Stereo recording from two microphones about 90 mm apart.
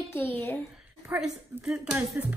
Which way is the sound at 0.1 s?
25° left (ahead or behind).